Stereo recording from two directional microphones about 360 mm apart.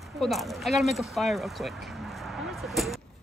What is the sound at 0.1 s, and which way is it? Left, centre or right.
Speech, centre.